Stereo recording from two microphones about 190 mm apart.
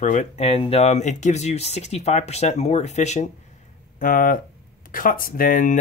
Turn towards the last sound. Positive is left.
turn(degrees=45)  # may be behind; listen again after turning